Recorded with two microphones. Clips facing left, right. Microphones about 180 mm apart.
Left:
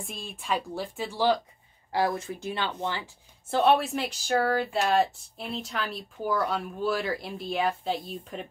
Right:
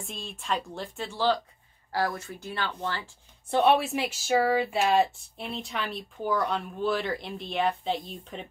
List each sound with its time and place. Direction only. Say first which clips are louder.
0.0 s speech: even; 5° left (ahead or behind)
3.4 s speech: even; centre (ahead or behind)